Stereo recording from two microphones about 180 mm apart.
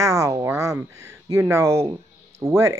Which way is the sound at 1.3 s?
15° right (ahead or behind).